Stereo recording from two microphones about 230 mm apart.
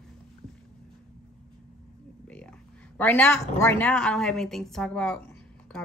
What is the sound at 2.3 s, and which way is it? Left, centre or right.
A woman's voice, centre.